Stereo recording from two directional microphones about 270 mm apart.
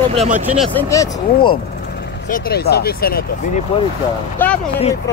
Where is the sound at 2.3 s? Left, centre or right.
Left.